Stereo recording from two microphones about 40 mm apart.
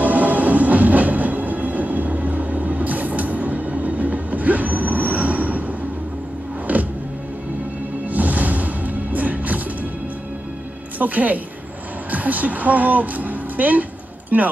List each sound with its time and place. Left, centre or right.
0.0 s train: right
6.7 s music: right
8.1 s music: right
11.0 s a woman's voice: right